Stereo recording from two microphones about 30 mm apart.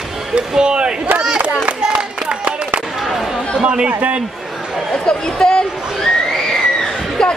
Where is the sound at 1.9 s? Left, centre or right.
Right.